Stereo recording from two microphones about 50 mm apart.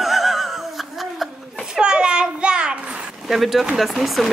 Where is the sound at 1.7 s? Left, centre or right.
Centre.